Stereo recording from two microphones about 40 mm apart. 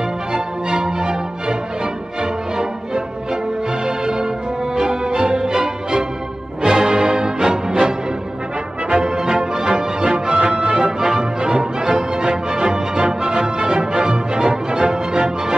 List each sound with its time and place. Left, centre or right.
0.3 s music: centre
3.8 s music: centre